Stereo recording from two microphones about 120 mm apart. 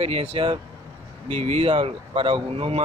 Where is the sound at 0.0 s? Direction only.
55° right (ahead or behind).